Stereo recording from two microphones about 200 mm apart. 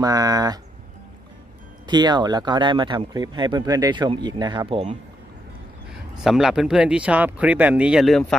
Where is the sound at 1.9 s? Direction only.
20° right (ahead or behind).